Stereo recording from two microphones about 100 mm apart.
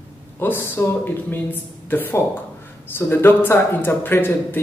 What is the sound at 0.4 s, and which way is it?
Speech, 25° left (ahead or behind).